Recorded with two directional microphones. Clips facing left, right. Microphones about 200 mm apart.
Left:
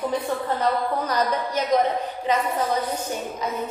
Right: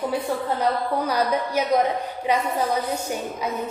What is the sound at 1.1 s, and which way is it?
A woman's voice, 10° right (ahead or behind).